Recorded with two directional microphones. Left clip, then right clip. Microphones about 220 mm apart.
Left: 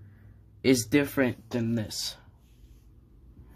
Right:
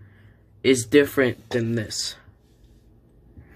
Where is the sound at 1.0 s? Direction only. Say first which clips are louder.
Right 7 dB; 25° left (ahead or behind).